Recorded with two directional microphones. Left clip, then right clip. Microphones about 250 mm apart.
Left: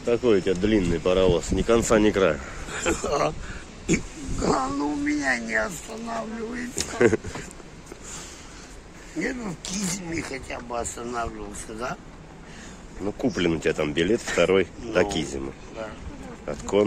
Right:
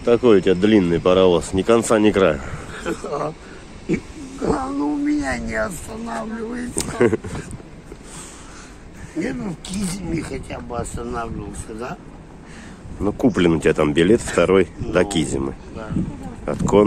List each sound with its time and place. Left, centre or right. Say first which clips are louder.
0.0 s speech: right 7 dB; right
2.7 s speech: left 1 dB; left
4.4 s cat: right 2 dB; left
4.7 s speech: right 5 dB; centre
6.8 s speech: right 2 dB; centre
9.2 s speech: right 3 dB; centre
13.0 s speech: right 7 dB; centre